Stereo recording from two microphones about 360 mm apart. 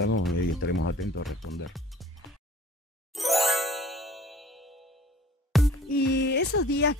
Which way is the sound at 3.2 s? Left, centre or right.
Centre.